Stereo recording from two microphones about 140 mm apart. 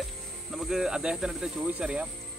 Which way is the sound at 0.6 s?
5° right (ahead or behind).